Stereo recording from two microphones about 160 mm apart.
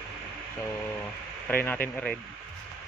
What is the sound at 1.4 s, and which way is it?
Speech, 10° left (ahead or behind).